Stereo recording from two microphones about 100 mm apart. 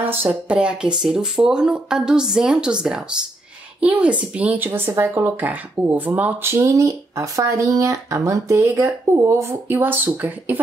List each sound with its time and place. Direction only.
0.0 s speech: 20° right (ahead or behind)